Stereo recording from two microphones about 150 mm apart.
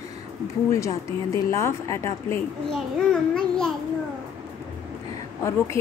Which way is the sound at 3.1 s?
5° left (ahead or behind).